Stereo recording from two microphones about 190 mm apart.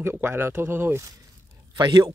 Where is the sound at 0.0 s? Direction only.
15° right (ahead or behind).